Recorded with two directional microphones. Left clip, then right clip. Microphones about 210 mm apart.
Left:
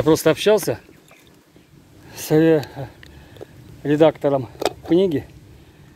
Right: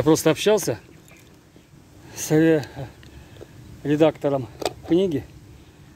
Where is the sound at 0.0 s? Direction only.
10° right (ahead or behind).